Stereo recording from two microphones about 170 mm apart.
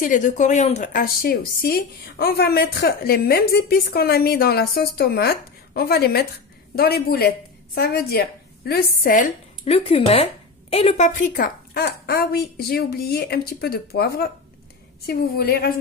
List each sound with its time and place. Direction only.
0.0 s speech: 50° left (ahead or behind)
1.0 s a woman's voice: 60° left (ahead or behind)
9.7 s a woman's voice: 35° left (ahead or behind); by 15.8 s 65° left (ahead or behind)